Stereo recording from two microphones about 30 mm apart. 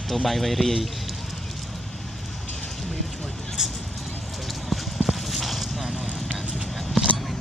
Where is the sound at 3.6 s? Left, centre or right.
Centre.